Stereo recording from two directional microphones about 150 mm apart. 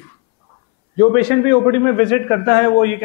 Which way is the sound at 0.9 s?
20° left (ahead or behind).